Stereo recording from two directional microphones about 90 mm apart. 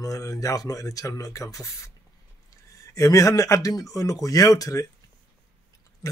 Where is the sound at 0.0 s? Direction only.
40° left (ahead or behind).